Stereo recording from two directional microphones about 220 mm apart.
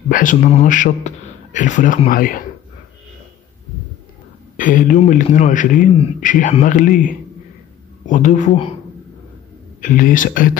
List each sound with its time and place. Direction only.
0.1 s a man's voice: 35° left (ahead or behind)
4.6 s a man's voice: 35° left (ahead or behind)
9.8 s a man's voice: 35° left (ahead or behind)